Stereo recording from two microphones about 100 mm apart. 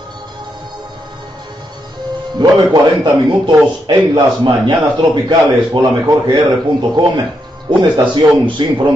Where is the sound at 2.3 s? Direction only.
45° right (ahead or behind).